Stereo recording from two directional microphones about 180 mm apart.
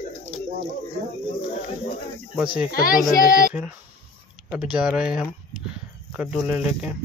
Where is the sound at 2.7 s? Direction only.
50° left (ahead or behind).